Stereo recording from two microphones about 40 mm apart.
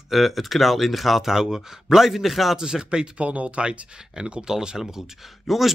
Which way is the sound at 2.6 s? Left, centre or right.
Centre.